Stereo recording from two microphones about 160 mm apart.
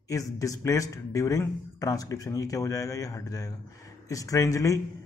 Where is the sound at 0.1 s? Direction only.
20° left (ahead or behind).